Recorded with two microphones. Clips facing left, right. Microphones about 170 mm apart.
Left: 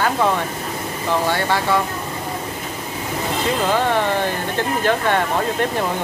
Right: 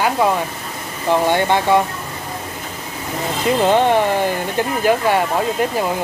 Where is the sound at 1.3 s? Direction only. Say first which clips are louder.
Right 5 dB; 20° right (ahead or behind).